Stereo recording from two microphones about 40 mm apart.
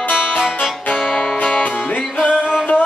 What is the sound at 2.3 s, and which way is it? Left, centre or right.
Music, right.